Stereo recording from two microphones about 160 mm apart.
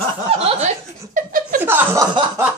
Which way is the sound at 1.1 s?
60° right (ahead or behind).